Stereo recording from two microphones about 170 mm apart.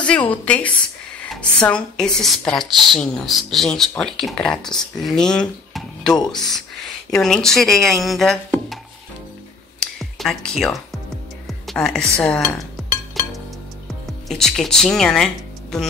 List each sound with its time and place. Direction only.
0.0 s a woman's voice: 10° left (ahead or behind)
6.1 s speech: 25° left (ahead or behind)
7.1 s speech: 5° left (ahead or behind)
9.8 s music: centre (ahead or behind)
11.4 s a woman's voice: centre (ahead or behind)
14.3 s speech: 5° left (ahead or behind)